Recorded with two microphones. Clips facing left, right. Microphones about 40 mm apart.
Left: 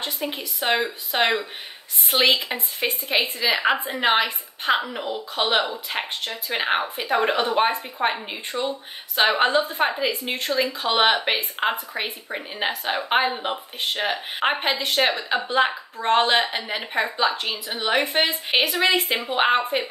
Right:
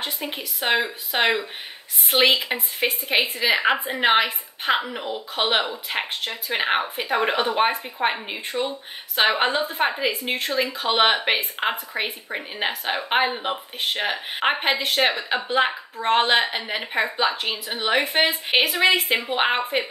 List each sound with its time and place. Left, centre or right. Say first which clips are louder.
0.0 s a woman's voice: left 1 dB; centre
2.4 s a woman's voice: right 2 dB; centre